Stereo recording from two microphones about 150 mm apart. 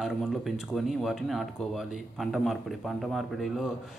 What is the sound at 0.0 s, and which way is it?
Speech, centre (ahead or behind).